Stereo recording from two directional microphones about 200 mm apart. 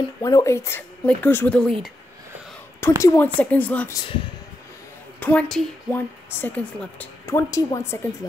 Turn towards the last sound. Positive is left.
turn(degrees=15)  # may be behind; listen again after turning